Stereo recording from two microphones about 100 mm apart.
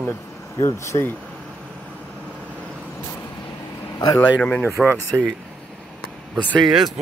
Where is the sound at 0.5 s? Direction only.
30° left (ahead or behind).